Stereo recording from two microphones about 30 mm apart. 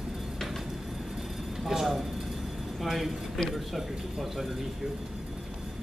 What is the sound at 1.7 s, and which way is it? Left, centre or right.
A woman's voice, centre.